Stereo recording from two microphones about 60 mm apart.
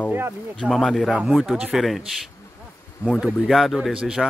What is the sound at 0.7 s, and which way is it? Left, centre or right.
Speech, centre.